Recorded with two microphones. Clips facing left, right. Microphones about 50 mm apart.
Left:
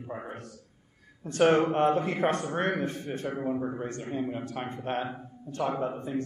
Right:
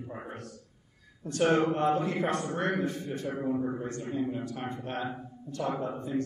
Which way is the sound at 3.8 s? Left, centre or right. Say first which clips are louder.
Even; left.